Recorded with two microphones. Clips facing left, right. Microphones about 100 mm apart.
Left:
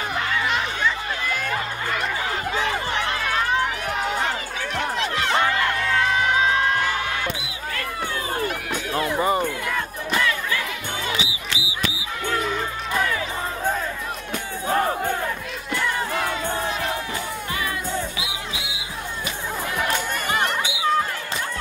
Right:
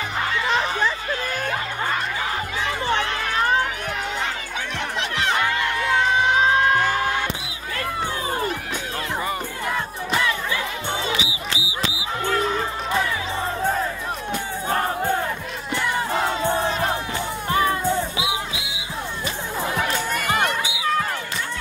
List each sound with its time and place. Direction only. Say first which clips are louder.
11.1 s a sound: right 1 dB; 25° right (ahead or behind)
15.7 s music: right 1 dB; 25° right (ahead or behind)
17.5 s music: right 10 dB; 35° right (ahead or behind)
19.7 s music: even; 35° right (ahead or behind)